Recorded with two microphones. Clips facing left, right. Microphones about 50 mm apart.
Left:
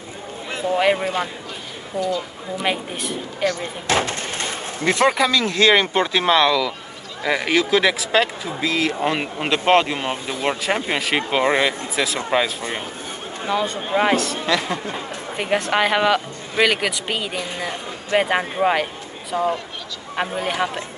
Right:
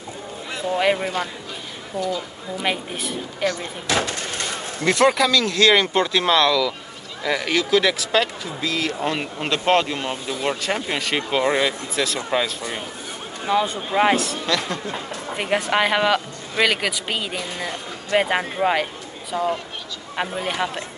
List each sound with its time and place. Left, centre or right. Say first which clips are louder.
0.7 s speech: left 2 dB; centre
3.8 s speech: left 2 dB; left; by 12.5 s centre
13.9 s a man's voice: even; centre
14.4 s speech: left 2 dB; centre
15.3 s speech: left 1 dB; centre
17.4 s speech: left 2 dB; centre
18.1 s speech: left 1 dB; centre